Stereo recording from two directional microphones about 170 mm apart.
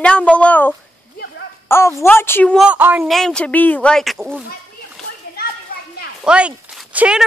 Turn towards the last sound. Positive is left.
turn(degrees=-5)  # may be behind; listen again after turning